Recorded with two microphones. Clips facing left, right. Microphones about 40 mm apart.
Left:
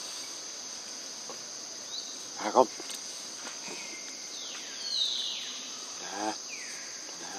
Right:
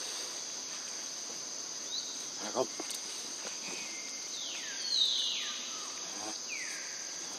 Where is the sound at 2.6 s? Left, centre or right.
Left.